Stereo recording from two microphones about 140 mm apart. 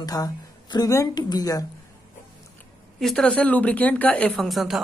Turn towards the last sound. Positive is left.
turn(degrees=0)  # may be behind; listen again after turning